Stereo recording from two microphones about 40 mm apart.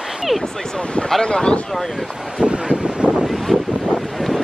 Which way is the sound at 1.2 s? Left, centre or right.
Left.